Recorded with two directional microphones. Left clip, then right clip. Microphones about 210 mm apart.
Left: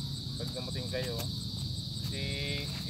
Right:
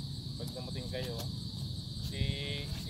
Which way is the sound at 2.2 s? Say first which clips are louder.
Left 2 dB; 20° left (ahead or behind).